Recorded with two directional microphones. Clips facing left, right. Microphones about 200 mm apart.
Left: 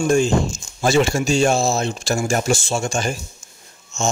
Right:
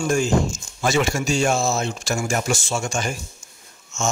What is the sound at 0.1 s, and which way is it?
Speech, 30° left (ahead or behind).